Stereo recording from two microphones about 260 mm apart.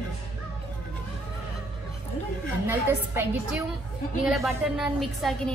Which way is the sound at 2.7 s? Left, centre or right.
Centre.